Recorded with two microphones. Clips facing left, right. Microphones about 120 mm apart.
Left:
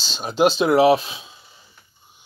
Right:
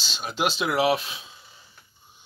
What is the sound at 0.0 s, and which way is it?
Speech, 30° left (ahead or behind).